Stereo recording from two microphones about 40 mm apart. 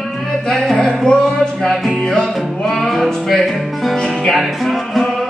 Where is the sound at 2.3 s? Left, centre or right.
Centre.